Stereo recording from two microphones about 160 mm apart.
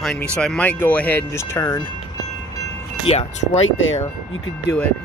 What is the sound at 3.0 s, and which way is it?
Speech, 35° left (ahead or behind).